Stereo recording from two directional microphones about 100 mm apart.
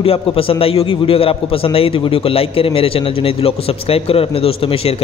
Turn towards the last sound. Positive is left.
turn(degrees=70)  # may be behind; listen again after turning